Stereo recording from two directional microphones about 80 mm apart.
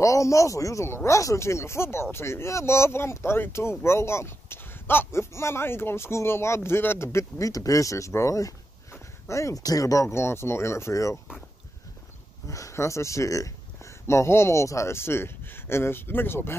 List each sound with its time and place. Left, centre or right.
0.0 s speech: left
12.4 s speech: left